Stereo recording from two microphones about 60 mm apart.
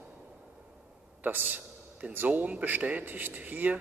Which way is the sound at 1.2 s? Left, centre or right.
Right.